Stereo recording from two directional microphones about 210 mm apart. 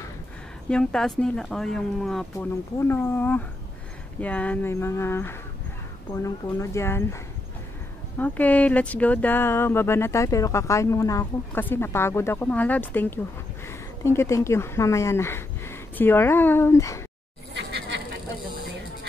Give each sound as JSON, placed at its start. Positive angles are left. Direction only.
{"t": 0.7, "sound": "speech", "side_deg": 5}
{"t": 2.3, "sound": "speech", "side_deg": 10}
{"t": 8.2, "sound": "speech", "side_deg": 5}
{"t": 17.6, "sound": "insect", "side_deg": -55}